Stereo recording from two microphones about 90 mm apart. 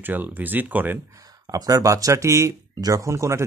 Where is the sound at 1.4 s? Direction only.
40° right (ahead or behind).